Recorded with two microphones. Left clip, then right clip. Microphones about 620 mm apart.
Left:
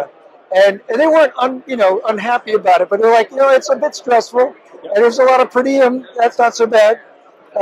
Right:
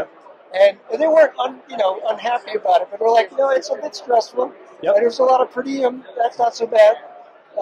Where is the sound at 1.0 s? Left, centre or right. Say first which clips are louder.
Left 2 dB; left.